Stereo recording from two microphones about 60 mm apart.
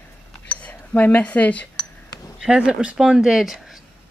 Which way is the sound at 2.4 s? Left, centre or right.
Centre.